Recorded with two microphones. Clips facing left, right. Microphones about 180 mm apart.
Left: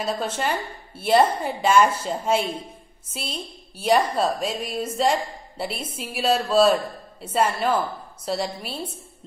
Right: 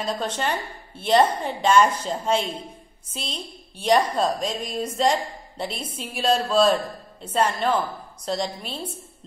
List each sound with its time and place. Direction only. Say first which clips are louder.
0.0 s a woman's voice: left 1 dB; 5° left (ahead or behind)